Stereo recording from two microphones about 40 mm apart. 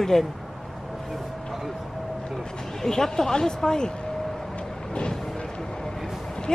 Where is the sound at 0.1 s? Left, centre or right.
Centre.